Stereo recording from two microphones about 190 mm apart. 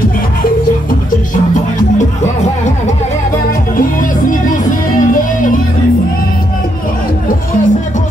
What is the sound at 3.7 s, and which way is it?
Music, 45° left (ahead or behind).